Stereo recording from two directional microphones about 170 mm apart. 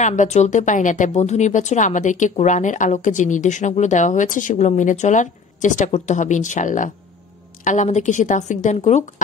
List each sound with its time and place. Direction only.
0.0 s speech: 45° left (ahead or behind)